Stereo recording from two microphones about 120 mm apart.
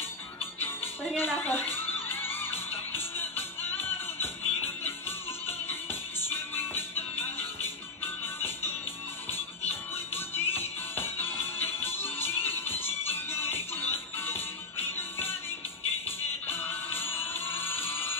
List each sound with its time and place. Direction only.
1.1 s music: 15° left (ahead or behind)
6.2 s music: 20° left (ahead or behind)
9.7 s music: 20° left (ahead or behind)
16.4 s music: 20° left (ahead or behind)